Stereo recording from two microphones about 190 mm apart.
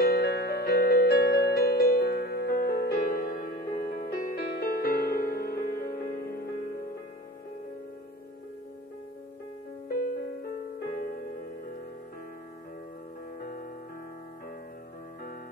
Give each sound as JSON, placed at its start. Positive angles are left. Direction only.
{"t": 0.0, "sound": "music", "side_deg": 55}
{"t": 10.0, "sound": "music", "side_deg": 50}
{"t": 13.4, "sound": "music", "side_deg": 50}